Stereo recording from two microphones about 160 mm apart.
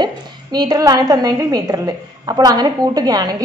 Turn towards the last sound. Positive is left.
turn(degrees=-25)  # may be behind; listen again after turning